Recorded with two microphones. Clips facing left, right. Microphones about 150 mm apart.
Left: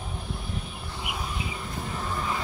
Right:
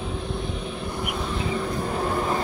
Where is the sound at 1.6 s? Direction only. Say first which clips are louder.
Right 8 dB; 60° right (ahead or behind); by 2.4 s 45° right (ahead or behind).